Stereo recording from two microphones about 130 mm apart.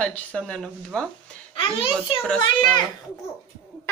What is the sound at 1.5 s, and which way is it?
Speech, 45° left (ahead or behind).